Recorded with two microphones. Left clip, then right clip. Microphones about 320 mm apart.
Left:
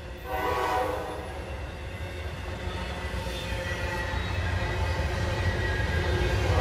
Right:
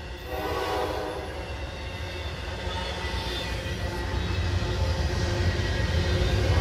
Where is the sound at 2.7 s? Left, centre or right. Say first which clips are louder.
Right 5 dB; right.